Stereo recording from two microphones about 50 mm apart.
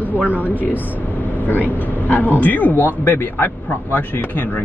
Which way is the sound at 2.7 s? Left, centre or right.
Left.